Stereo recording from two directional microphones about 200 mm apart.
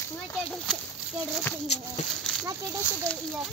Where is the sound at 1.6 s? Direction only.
30° left (ahead or behind).